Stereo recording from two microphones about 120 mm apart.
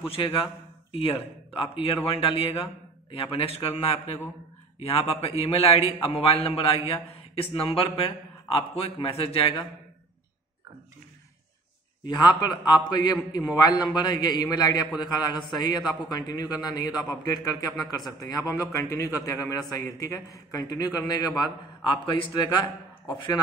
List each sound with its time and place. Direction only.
0.1 s speech: 50° left (ahead or behind)
3.1 s a man's voice: 55° left (ahead or behind)
12.1 s a man's voice: 35° left (ahead or behind)